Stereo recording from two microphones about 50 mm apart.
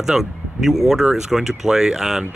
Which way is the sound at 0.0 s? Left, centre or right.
Centre.